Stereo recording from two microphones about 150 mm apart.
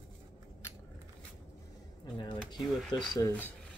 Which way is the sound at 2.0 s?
30° left (ahead or behind).